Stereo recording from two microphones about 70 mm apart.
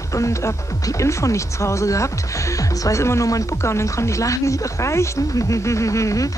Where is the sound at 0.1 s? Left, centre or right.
Left.